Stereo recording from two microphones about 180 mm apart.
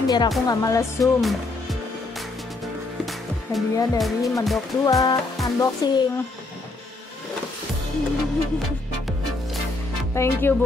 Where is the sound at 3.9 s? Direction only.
Centre (ahead or behind).